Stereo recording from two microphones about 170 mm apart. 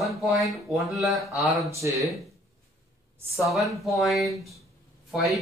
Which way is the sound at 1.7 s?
20° right (ahead or behind).